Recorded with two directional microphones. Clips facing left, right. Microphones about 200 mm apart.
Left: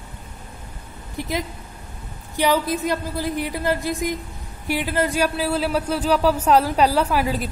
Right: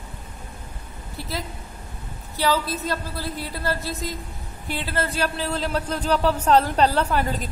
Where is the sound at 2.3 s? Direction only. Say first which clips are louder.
Left 3 dB; 15° left (ahead or behind).